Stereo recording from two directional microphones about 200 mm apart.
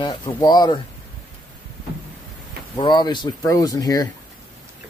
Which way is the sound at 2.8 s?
20° left (ahead or behind).